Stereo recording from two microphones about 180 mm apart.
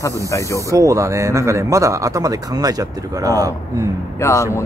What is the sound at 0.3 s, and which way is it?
Speech, 15° left (ahead or behind).